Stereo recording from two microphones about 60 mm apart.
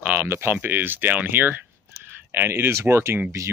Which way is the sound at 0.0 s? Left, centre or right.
Right.